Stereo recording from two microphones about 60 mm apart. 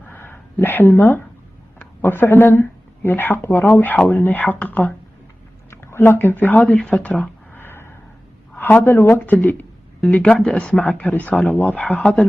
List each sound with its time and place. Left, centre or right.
0.0 s a sound: left
2.0 s speech: left
3.4 s speech: left
4.1 s speech: left
5.7 s speech: left
7.5 s a sound: left
8.5 s a woman's voice: left
10.1 s speech: centre
12.0 s speech: centre